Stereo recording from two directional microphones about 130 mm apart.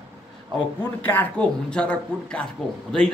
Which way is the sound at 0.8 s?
15° left (ahead or behind).